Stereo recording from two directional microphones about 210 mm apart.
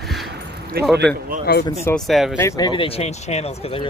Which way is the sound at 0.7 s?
50° right (ahead or behind).